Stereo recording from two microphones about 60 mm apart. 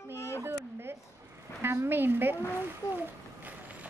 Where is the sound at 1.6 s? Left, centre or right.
Right.